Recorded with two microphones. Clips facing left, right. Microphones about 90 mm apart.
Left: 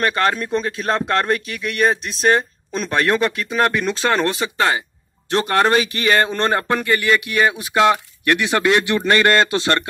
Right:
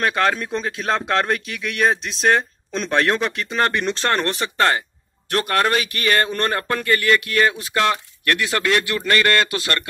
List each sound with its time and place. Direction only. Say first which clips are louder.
0.0 s a man's voice: left 1 dB; centre (ahead or behind)
5.3 s speech: left 3 dB; 25° left (ahead or behind)